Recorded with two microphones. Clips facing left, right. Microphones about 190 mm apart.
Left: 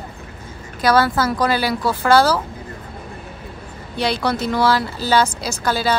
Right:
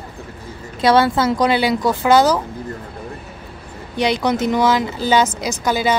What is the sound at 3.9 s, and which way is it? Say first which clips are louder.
Speech: right 3 dB; 15° right (ahead or behind).